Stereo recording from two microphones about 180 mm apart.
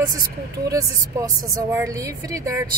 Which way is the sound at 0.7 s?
20° right (ahead or behind).